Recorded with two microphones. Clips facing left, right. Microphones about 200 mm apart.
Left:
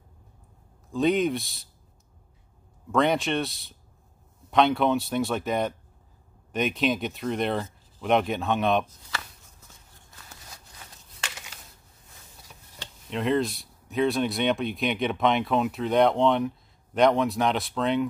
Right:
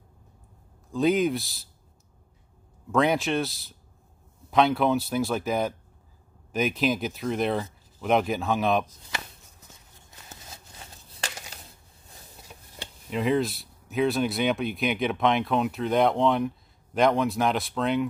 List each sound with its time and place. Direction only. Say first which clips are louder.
0.9 s speech: even; centre (ahead or behind)
2.9 s speech: even; centre (ahead or behind)
9.7 s a sound: right 1 dB; 20° right (ahead or behind)
13.1 s speech: even; centre (ahead or behind)